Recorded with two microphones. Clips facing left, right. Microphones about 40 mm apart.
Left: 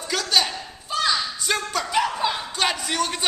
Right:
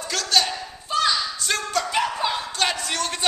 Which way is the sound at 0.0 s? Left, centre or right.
Centre.